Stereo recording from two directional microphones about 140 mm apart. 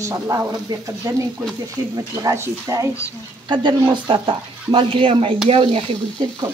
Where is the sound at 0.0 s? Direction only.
20° right (ahead or behind).